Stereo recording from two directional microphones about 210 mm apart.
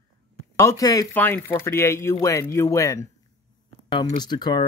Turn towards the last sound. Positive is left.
turn(degrees=20)  # may be behind; listen again after turning